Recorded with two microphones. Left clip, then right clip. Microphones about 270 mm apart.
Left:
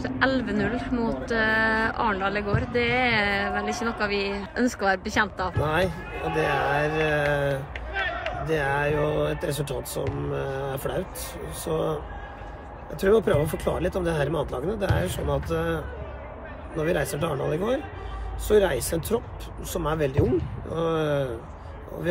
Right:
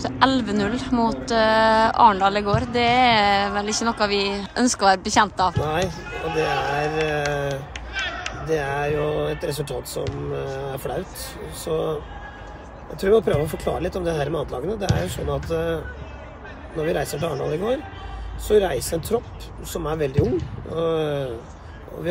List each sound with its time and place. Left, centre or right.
0.0 s speech: centre
5.6 s speech: centre
7.9 s a sound: left
8.5 s speech: centre
13.0 s speech: centre
18.5 s speech: centre